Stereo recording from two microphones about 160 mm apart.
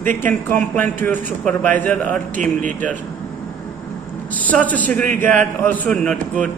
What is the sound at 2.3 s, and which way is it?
Speech, 55° right (ahead or behind).